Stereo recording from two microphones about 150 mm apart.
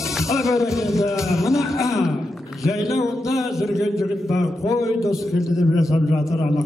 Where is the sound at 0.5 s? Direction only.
20° left (ahead or behind).